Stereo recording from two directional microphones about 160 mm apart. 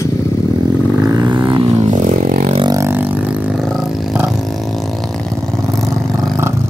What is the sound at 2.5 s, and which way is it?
Vehicle, 25° right (ahead or behind).